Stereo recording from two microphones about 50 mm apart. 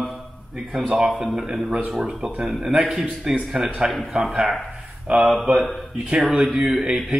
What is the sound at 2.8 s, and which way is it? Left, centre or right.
Speech, right.